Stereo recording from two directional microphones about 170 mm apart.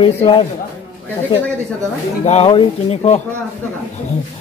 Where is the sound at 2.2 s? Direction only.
40° left (ahead or behind).